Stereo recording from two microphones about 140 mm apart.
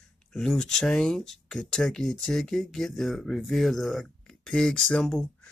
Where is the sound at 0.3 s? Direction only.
5° left (ahead or behind).